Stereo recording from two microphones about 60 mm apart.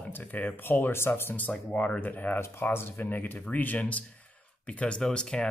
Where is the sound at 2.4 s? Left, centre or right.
Left.